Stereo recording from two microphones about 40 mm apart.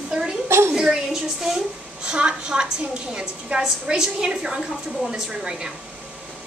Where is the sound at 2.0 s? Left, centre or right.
Right.